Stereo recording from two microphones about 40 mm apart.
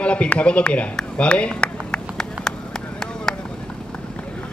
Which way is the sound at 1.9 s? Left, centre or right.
Centre.